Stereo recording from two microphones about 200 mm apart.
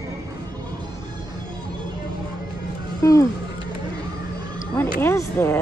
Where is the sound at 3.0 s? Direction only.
15° left (ahead or behind).